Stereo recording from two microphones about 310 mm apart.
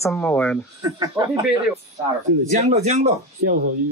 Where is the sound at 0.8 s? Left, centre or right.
Centre.